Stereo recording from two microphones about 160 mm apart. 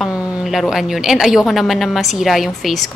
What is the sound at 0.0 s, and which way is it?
A woman's voice, centre (ahead or behind).